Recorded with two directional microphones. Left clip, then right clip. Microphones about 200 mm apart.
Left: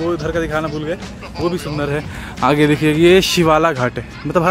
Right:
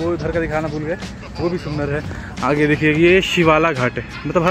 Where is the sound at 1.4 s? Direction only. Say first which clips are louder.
Left 2 dB; centre (ahead or behind).